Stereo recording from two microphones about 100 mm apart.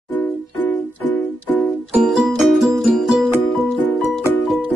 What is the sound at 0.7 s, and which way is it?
Music, 15° left (ahead or behind).